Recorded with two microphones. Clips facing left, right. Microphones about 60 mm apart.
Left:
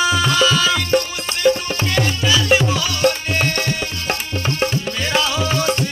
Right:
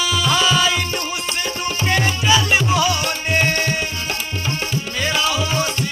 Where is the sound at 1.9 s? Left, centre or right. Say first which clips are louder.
Right 2 dB; centre.